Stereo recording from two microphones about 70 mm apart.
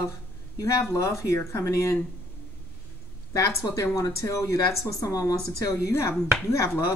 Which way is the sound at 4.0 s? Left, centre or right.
Left.